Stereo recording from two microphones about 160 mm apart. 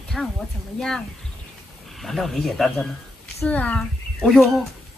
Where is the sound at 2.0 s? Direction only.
Centre (ahead or behind).